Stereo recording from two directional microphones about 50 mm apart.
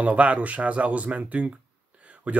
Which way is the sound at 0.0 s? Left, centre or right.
Right.